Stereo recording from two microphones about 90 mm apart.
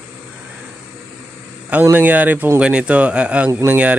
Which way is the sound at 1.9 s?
20° right (ahead or behind).